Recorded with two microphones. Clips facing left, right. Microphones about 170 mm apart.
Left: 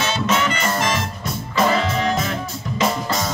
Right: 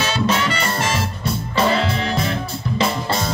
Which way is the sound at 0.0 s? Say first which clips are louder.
Right 1 dB; 35° right (ahead or behind).